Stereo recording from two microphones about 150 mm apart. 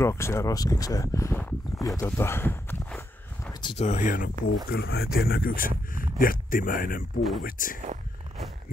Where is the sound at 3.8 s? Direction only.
55° left (ahead or behind).